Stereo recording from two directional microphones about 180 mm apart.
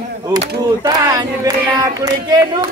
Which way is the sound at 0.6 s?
20° right (ahead or behind).